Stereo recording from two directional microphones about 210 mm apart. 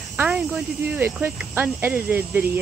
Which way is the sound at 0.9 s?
10° right (ahead or behind).